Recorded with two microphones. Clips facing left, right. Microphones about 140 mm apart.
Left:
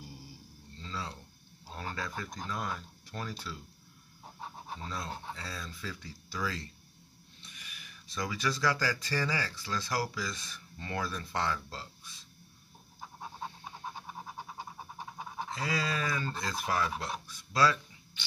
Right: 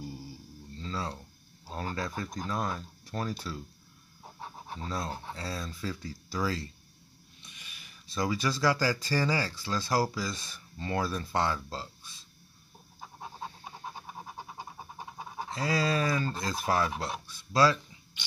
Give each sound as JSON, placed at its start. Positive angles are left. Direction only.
{"t": 0.8, "sound": "a sound", "side_deg": -40}
{"t": 1.8, "sound": "speech", "side_deg": -40}
{"t": 4.8, "sound": "speech", "side_deg": -35}
{"t": 15.5, "sound": "speech", "side_deg": -35}